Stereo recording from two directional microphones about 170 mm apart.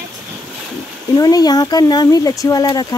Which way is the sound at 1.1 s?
20° left (ahead or behind).